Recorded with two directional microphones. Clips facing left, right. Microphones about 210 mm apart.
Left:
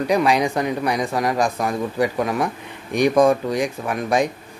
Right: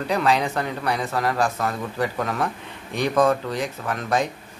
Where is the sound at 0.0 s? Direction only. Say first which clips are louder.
Left 4 dB; 15° left (ahead or behind).